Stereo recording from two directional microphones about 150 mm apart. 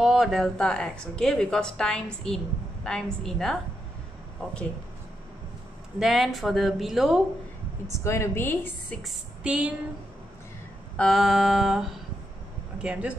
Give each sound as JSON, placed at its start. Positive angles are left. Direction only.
{"t": 0.0, "sound": "a woman's voice", "side_deg": -5}
{"t": 5.9, "sound": "a woman's voice", "side_deg": 0}
{"t": 8.0, "sound": "a woman's voice", "side_deg": 15}
{"t": 9.0, "sound": "speech", "side_deg": -5}
{"t": 11.0, "sound": "a woman's voice", "side_deg": 0}